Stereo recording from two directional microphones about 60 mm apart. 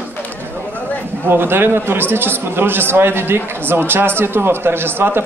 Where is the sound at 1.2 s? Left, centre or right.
Right.